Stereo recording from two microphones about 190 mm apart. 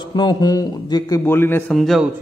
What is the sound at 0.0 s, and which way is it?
A man's voice, 25° left (ahead or behind).